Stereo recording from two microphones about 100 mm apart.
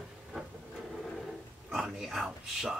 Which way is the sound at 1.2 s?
5° right (ahead or behind).